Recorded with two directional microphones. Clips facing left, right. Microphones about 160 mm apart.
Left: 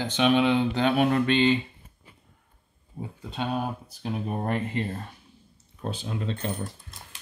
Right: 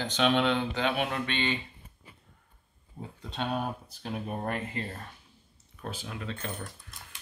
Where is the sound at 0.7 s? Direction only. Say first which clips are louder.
Left 7 dB; 40° left (ahead or behind).